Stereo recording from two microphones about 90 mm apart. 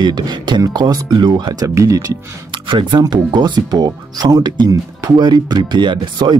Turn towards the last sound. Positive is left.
turn(degrees=-55)  # may be behind; listen again after turning